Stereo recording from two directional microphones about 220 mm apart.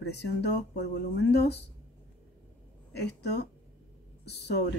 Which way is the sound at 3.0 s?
50° left (ahead or behind).